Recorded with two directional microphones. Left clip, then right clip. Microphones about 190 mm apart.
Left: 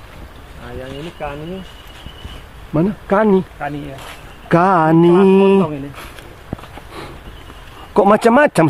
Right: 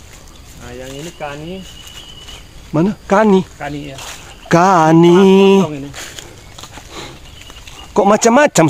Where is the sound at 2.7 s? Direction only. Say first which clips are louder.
Right 2 dB; 30° right (ahead or behind).